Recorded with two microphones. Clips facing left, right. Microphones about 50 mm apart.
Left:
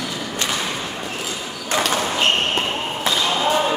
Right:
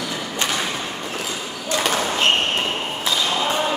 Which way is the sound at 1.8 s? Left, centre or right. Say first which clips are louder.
Even; centre.